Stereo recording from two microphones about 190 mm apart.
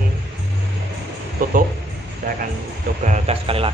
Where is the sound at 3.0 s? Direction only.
35° right (ahead or behind).